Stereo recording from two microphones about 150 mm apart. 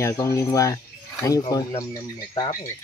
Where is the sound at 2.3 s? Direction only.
25° left (ahead or behind).